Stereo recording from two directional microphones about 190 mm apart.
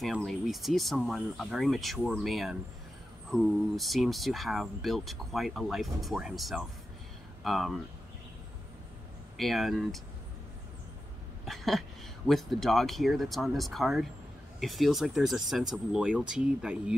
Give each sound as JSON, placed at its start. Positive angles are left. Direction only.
{"t": 0.0, "sound": "speech", "side_deg": 0}
{"t": 9.4, "sound": "speech", "side_deg": 0}
{"t": 11.4, "sound": "a sound", "side_deg": 0}
{"t": 12.3, "sound": "speech", "side_deg": 0}